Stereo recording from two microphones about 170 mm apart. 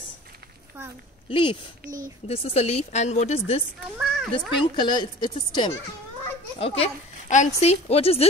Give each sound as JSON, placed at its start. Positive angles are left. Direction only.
{"t": 1.3, "sound": "speech", "side_deg": 30}
{"t": 4.0, "sound": "a sound", "side_deg": -5}
{"t": 4.3, "sound": "speech", "side_deg": 25}
{"t": 6.6, "sound": "speech", "side_deg": 40}